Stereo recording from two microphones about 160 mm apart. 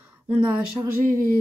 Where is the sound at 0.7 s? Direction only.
15° right (ahead or behind).